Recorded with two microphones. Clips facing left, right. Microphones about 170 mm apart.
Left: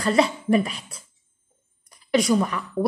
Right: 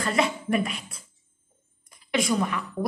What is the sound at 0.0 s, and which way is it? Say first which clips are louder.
Speech: left 5 dB; 35° left (ahead or behind).